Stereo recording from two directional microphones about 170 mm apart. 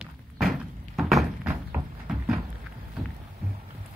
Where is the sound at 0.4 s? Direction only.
Centre (ahead or behind).